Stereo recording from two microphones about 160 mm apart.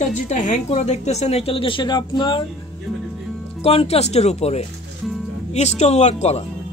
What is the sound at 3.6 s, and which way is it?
A woman's voice, 40° left (ahead or behind).